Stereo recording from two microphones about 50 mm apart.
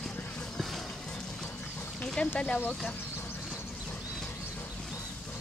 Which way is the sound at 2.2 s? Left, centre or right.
Left.